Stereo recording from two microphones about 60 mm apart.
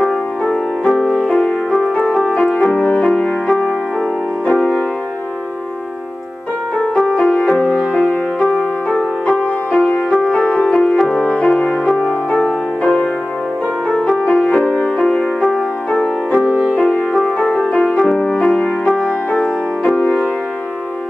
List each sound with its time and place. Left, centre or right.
0.0 s music: centre
6.8 s music: centre
16.5 s music: centre